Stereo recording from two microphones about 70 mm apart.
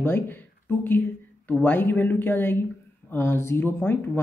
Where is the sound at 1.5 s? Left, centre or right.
Left.